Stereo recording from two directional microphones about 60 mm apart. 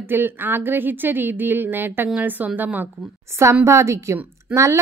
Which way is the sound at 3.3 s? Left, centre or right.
Right.